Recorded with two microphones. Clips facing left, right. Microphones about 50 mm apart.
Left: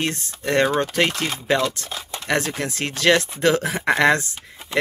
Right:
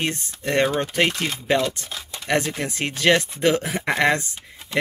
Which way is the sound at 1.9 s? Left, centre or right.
Left.